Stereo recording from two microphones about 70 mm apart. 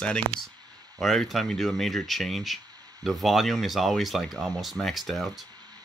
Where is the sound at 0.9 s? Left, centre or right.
Centre.